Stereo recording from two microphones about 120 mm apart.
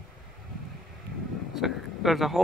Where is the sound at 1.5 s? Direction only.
Centre (ahead or behind).